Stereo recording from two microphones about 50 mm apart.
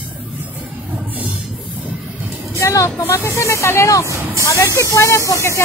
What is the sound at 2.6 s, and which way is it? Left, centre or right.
Speech, left.